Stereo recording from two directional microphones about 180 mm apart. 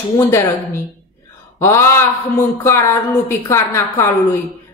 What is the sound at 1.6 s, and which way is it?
A woman's voice, 15° left (ahead or behind).